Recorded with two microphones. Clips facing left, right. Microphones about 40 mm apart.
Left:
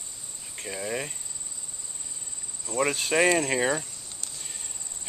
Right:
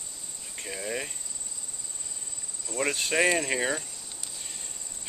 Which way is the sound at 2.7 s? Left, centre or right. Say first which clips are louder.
Left 3 dB; centre.